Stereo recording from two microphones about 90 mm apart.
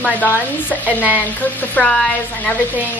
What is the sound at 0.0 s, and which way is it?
A woman's voice, 20° left (ahead or behind).